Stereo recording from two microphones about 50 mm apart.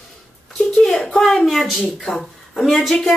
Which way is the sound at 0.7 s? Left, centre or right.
Centre.